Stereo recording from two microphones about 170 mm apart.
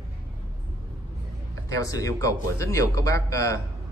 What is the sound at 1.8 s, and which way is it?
Speech, 20° left (ahead or behind).